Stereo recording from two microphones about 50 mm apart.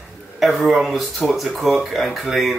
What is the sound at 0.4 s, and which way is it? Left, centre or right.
Speech, centre.